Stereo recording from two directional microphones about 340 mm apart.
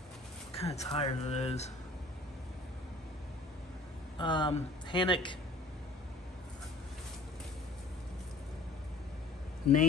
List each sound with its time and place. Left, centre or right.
0.6 s speech: centre
4.2 s speech: centre